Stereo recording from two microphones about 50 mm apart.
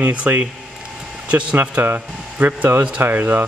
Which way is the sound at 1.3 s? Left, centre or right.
Right.